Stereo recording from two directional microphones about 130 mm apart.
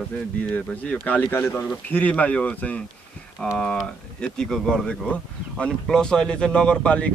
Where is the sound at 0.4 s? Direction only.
10° left (ahead or behind).